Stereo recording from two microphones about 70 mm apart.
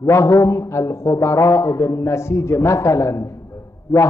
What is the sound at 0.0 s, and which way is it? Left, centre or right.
A man's voice, left.